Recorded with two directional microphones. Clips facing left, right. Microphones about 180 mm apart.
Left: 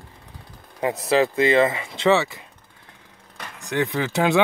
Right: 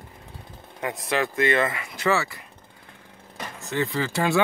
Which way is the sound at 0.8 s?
30° left (ahead or behind).